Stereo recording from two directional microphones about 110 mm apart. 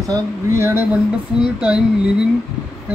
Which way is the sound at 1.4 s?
5° right (ahead or behind).